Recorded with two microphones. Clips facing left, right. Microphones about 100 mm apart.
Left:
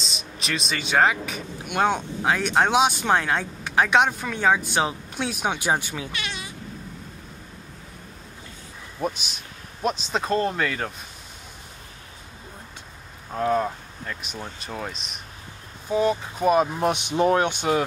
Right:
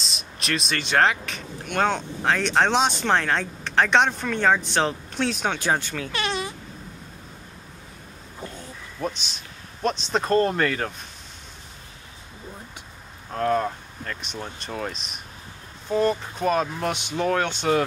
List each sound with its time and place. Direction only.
0.0 s speech: centre (ahead or behind)
6.1 s a sound: 45° right (ahead or behind)
9.0 s speech: 10° left (ahead or behind)
13.3 s speech: 5° left (ahead or behind)